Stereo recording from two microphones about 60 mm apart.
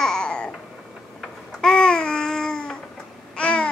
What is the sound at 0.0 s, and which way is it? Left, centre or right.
Babbling, centre.